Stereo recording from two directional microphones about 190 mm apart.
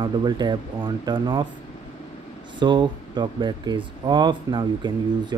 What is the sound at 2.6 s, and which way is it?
Speech, 25° right (ahead or behind).